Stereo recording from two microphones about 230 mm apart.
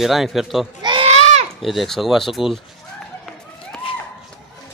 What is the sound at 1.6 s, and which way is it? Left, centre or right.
Speech, centre.